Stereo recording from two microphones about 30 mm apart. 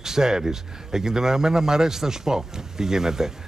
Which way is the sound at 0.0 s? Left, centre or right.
Centre.